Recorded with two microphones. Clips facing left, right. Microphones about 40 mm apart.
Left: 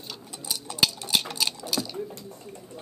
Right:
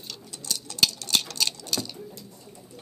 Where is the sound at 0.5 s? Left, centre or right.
Centre.